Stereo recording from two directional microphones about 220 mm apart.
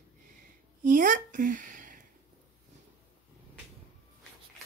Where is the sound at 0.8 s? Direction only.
35° right (ahead or behind).